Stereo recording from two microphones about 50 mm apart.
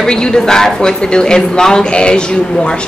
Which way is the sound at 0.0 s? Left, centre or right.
Centre.